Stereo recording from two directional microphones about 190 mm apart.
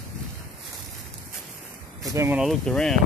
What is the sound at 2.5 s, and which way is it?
Speech, centre (ahead or behind).